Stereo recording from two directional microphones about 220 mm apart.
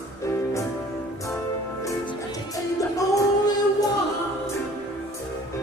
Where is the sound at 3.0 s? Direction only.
15° left (ahead or behind).